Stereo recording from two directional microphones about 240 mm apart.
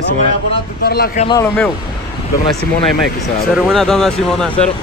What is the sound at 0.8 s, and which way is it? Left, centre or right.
Speech, left.